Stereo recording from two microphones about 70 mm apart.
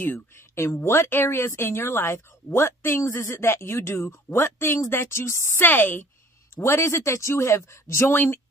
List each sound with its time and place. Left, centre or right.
0.0 s a woman's voice: left